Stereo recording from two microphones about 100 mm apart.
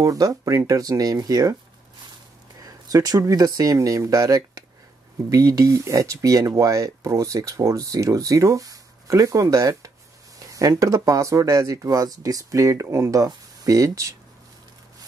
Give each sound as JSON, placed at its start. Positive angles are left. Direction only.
{"t": 0.0, "sound": "speech", "side_deg": -35}
{"t": 2.6, "sound": "speech", "side_deg": -40}